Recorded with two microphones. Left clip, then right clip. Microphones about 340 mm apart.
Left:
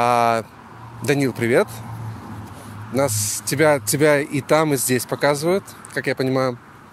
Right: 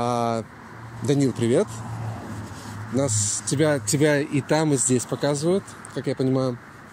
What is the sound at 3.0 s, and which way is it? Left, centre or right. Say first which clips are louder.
Speech: left 4 dB; left.